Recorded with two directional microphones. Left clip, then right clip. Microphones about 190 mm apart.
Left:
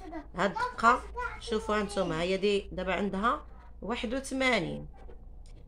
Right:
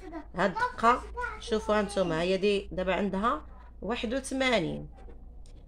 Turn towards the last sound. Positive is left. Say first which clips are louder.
# right 1 dB
turn(degrees=-20)  # may be behind; listen again after turning